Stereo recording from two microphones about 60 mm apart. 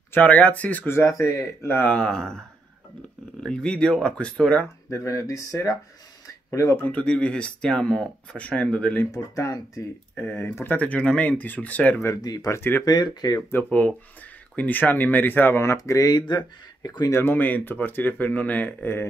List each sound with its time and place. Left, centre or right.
0.2 s speech: left
0.8 s speech: left
1.9 s speech: centre
3.4 s speech: centre
4.9 s speech: left
6.8 s speech: left
9.1 s speech: left
10.1 s speech: left
12.4 s speech: left
12.8 s speech: left
13.7 s speech: left
15.8 s speech: left
17.1 s speech: left